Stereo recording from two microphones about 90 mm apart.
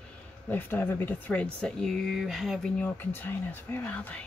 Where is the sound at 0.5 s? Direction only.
20° left (ahead or behind); by 2.7 s centre (ahead or behind).